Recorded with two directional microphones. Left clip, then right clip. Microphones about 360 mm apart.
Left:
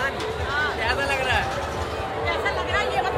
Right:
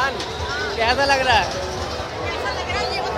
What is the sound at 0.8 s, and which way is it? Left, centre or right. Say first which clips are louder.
Speech: right 6 dB; centre.